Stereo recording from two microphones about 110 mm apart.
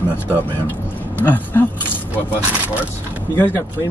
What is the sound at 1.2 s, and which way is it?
Speech, 15° left (ahead or behind).